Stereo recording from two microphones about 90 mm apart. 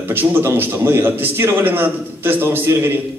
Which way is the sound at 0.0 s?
25° right (ahead or behind).